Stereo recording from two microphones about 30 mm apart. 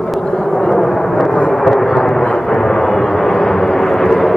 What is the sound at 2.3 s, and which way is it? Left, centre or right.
Vehicle, centre.